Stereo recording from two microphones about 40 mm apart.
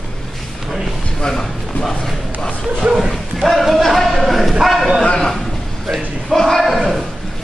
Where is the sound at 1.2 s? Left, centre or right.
Centre.